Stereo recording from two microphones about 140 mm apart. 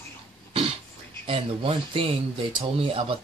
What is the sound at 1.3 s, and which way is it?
Speech, 40° right (ahead or behind).